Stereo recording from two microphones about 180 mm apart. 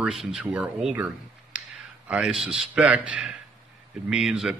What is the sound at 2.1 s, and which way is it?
A man's voice, 5° right (ahead or behind).